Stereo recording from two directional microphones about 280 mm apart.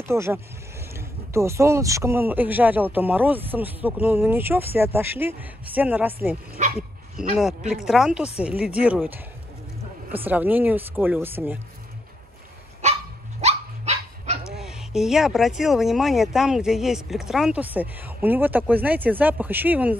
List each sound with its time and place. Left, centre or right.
0.0 s speech: centre
7.3 s speech: centre
10.2 s speech: centre
13.4 s dog: right
14.5 s speech: centre